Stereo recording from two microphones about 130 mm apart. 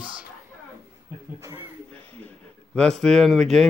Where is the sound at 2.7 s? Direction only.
5° left (ahead or behind).